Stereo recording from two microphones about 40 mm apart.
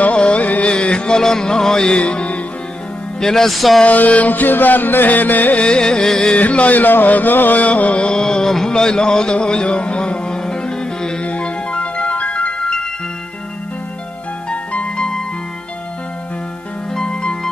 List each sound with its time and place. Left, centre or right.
0.0 s music: left
1.2 s a sound: centre
2.0 s music: left
3.2 s a sound: centre
3.5 s a sound: centre
3.8 s music: left
5.6 s music: left
6.3 s music: left
7.6 s music: left; by 11.1 s centre
11.2 s music: left
14.5 s music: left
15.0 s music: centre
16.9 s music: left